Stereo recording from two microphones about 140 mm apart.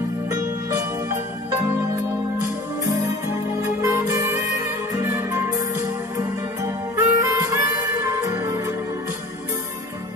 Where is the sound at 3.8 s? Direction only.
20° right (ahead or behind).